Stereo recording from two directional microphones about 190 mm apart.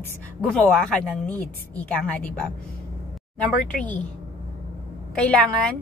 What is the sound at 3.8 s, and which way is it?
Speech, 5° left (ahead or behind).